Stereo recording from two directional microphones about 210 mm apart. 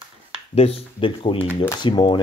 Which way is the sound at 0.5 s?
30° left (ahead or behind).